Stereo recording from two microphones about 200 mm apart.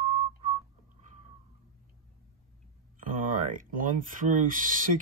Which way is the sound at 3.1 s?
40° right (ahead or behind).